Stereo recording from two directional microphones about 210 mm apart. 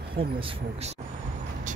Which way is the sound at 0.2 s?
25° right (ahead or behind).